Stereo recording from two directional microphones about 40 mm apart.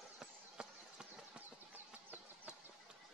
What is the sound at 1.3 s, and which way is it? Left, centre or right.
Horse, right.